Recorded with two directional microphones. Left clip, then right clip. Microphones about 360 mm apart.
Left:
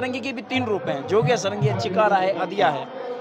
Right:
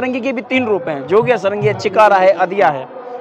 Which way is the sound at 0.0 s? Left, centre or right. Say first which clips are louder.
Right 9 dB; right.